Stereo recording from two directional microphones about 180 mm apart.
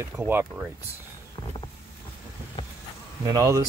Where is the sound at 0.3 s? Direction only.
10° right (ahead or behind).